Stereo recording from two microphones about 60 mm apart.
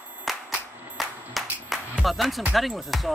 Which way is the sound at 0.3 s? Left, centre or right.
Centre.